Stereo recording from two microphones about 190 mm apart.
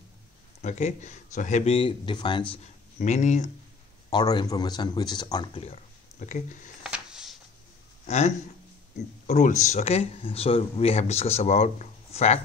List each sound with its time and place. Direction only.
0.6 s speech: 35° left (ahead or behind)
2.5 s speech: 35° left (ahead or behind)
4.1 s speech: 20° left (ahead or behind); by 6.7 s 40° left (ahead or behind)
6.8 s a sound: 5° right (ahead or behind)
9.3 s speech: 40° left (ahead or behind)